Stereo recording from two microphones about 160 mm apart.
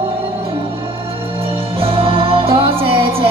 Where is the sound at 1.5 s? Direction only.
35° right (ahead or behind).